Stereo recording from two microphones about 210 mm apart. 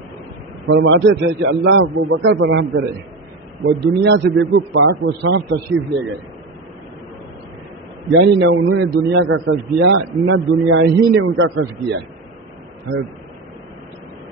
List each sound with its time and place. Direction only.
0.7 s a man's voice: 65° right (ahead or behind)
8.1 s a man's voice: 60° right (ahead or behind)